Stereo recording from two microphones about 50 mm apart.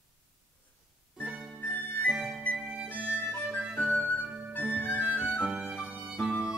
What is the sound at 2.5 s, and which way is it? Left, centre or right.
Music, right.